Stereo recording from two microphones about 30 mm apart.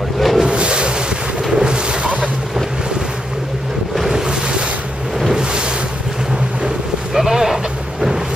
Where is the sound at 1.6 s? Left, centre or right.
Right.